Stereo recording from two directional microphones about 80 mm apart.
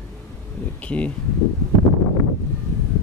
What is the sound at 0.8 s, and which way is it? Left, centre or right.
Speech, centre.